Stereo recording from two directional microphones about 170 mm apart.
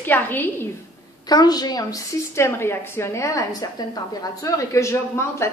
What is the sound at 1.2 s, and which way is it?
A woman's voice, 25° left (ahead or behind).